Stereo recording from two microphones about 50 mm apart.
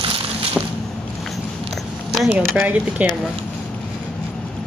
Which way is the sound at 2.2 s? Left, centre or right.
Right.